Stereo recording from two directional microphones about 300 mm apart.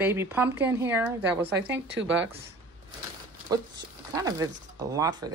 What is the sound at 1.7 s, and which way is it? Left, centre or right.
Speech, right.